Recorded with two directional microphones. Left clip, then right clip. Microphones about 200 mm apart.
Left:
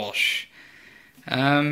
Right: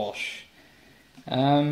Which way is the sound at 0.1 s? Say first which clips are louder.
Left 10 dB; 10° left (ahead or behind).